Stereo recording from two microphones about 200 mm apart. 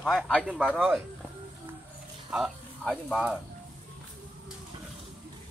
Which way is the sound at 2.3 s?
Centre (ahead or behind).